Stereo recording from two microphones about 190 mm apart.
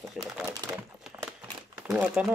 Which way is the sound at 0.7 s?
5° right (ahead or behind).